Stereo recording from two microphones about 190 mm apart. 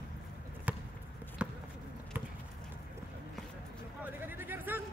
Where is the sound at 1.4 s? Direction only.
5° right (ahead or behind).